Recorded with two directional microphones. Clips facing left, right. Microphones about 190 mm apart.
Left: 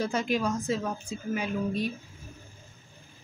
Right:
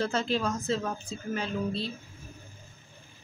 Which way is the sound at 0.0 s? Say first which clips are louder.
Left 1 dB; 10° left (ahead or behind).